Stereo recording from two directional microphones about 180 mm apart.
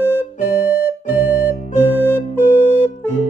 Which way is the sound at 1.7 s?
10° left (ahead or behind).